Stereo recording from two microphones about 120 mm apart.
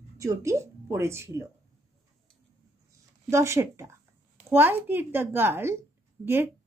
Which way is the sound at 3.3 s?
25° right (ahead or behind).